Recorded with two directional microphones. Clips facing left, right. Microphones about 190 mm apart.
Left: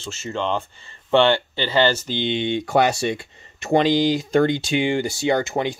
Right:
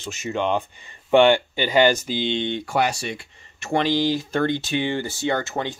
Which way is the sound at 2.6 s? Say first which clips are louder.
Left 4 dB; 25° left (ahead or behind).